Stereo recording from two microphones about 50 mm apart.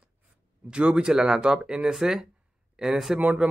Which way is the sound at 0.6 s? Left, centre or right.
Right.